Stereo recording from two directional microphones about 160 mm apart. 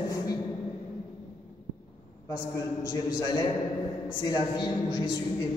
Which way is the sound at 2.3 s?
25° left (ahead or behind).